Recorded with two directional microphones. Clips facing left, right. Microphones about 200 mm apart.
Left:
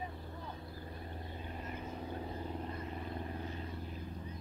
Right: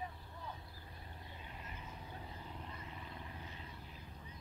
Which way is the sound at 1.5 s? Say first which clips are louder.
Left 9 dB; 45° left (ahead or behind).